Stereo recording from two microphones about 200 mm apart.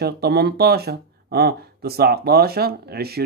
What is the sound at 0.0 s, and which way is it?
Speech, 55° right (ahead or behind).